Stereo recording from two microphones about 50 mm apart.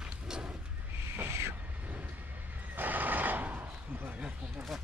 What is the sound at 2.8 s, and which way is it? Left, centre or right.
Neigh, right.